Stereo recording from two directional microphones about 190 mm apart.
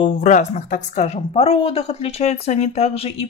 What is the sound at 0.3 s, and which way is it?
A woman's voice, 40° left (ahead or behind).